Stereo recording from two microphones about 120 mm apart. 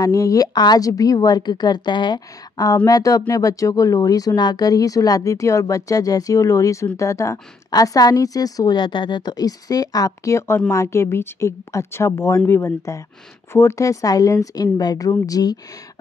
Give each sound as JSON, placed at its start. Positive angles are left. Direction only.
{"t": 0.0, "sound": "speech", "side_deg": 30}